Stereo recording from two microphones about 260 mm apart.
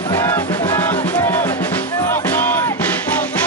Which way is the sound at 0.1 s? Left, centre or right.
Centre.